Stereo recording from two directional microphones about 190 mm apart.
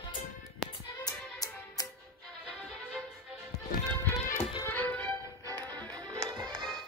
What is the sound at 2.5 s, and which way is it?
Music, 5° left (ahead or behind).